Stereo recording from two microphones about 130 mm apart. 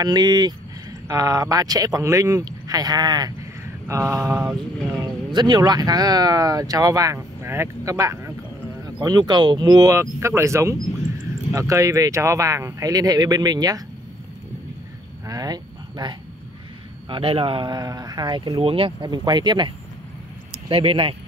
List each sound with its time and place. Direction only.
0.0 s speech: 30° right (ahead or behind)
3.8 s speech: 20° right (ahead or behind)
5.0 s speech: 35° right (ahead or behind)
15.2 s a sound: 30° right (ahead or behind)
17.1 s speech: 45° right (ahead or behind)